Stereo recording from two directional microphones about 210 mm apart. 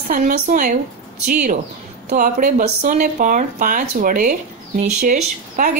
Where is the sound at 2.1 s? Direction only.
40° right (ahead or behind).